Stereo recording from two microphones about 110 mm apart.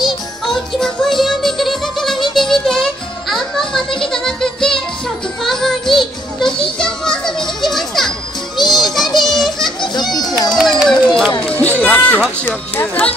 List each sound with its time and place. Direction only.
0.0 s music: 5° left (ahead or behind)
6.8 s children playing: 5° left (ahead or behind)
11.4 s run: 15° left (ahead or behind)